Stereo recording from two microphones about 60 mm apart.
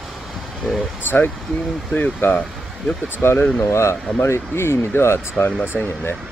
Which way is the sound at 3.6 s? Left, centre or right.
Left.